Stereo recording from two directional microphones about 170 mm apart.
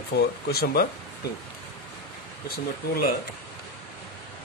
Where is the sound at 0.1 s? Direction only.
70° left (ahead or behind).